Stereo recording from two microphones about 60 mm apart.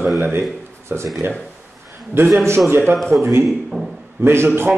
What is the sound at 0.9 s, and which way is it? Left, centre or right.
Speech, right.